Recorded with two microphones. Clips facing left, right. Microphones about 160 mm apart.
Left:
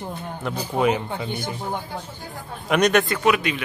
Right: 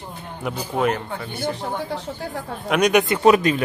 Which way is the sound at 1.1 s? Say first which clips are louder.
Left 1 dB; 15° left (ahead or behind).